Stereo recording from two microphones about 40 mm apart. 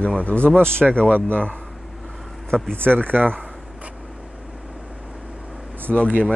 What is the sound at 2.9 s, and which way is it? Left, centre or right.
Speech, right.